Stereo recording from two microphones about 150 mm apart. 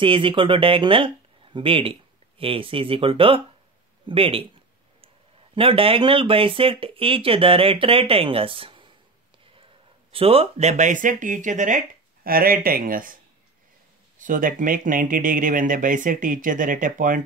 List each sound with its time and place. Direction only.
0.0 s speech: 35° right (ahead or behind)
10.1 s speech: 40° right (ahead or behind); by 17.2 s 60° right (ahead or behind)